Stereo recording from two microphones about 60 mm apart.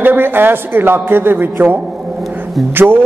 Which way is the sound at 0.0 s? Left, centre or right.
Right.